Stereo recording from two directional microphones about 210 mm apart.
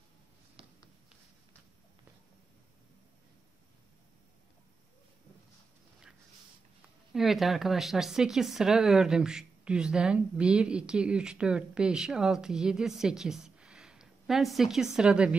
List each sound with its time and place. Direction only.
7.2 s speech: centre (ahead or behind)